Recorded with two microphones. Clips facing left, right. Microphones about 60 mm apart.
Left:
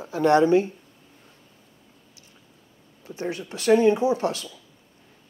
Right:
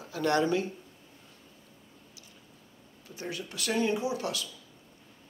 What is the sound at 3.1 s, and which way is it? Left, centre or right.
Speech, left.